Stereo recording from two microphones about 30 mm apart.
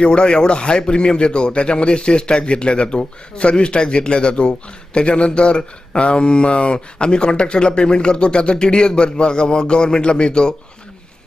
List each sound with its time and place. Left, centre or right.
0.0 s a man's voice: left